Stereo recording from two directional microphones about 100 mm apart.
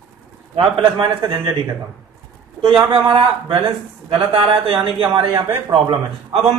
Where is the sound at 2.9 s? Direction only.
60° right (ahead or behind).